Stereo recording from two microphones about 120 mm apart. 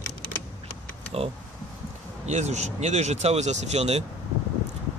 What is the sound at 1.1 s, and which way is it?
Speech, 60° right (ahead or behind).